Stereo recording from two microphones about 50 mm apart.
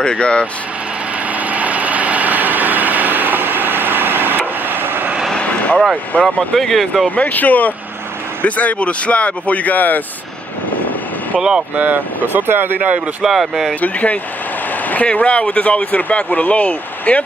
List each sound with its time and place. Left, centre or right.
0.0 s speech: left
1.4 s vehicle: right
5.4 s vehicle: left
6.1 s speech: left
6.5 s speech: centre
7.2 s speech: left
11.3 s speech: centre
11.7 s speech: right
13.2 s speech: centre
13.7 s speech: left